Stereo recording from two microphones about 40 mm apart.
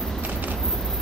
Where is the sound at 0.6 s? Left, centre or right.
Centre.